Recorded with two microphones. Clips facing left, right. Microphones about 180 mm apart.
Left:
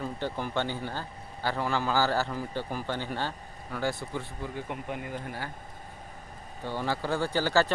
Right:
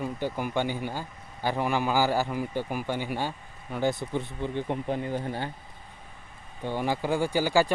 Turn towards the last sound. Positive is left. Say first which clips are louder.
# right 2 dB
turn(degrees=-10)  # may be behind; listen again after turning